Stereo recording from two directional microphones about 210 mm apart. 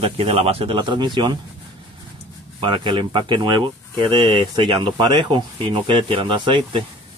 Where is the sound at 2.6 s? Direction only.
25° right (ahead or behind).